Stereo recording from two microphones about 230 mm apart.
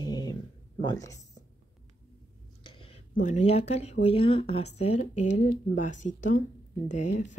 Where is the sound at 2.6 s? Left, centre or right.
Left.